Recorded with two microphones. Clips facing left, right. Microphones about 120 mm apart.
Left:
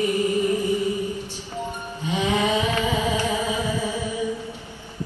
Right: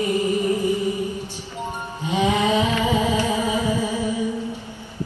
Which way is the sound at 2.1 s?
15° right (ahead or behind).